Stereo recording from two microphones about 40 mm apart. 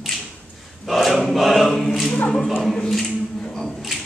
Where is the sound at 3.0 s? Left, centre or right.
Centre.